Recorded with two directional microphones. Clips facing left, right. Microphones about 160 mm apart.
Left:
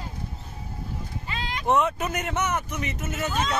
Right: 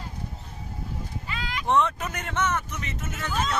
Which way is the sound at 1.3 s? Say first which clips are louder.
Left 1 dB; 25° left (ahead or behind).